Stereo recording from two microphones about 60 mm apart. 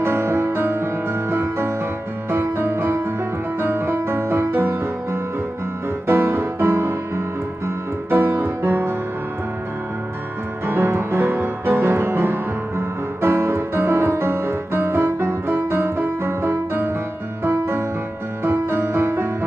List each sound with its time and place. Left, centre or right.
0.0 s music: right
10.7 s music: right